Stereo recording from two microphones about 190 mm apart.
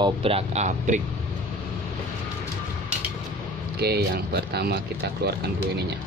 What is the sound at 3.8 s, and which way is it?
Speech, 60° right (ahead or behind).